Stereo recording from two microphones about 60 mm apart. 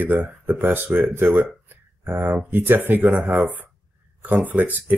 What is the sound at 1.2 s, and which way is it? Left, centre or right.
Speech, right.